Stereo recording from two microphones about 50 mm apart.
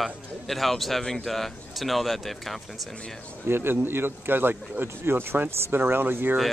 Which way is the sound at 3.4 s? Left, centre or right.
Right.